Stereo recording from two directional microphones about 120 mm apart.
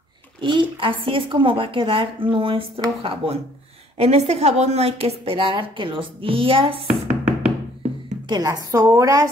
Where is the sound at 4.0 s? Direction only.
65° right (ahead or behind).